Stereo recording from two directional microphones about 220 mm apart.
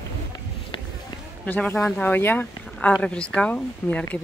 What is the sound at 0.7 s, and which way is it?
Run, 20° left (ahead or behind).